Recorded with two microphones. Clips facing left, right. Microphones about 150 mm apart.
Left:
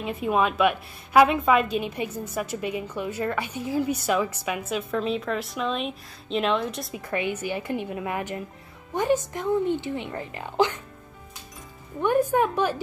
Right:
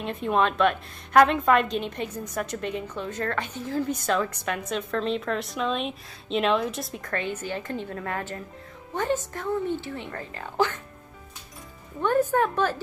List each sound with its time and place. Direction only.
0.0 s a woman's voice: 5° left (ahead or behind)
12.0 s a woman's voice: 15° left (ahead or behind)